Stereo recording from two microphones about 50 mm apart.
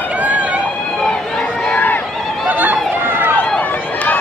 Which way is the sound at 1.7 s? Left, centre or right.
Left.